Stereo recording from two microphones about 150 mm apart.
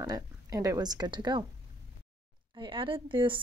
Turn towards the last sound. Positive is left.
turn(degrees=-35)  # may be behind; listen again after turning